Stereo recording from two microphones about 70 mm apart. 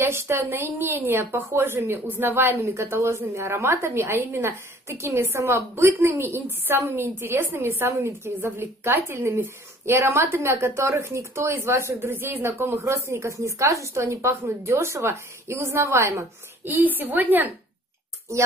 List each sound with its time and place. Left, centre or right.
0.0 s a woman's voice: right
2.6 s a woman's voice: right
16.7 s a woman's voice: right